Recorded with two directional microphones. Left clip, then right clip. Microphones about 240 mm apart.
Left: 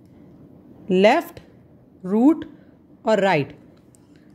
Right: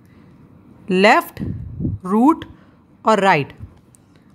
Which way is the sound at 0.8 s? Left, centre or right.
Centre.